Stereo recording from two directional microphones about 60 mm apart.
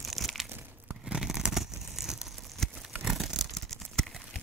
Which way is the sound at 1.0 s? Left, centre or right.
Centre.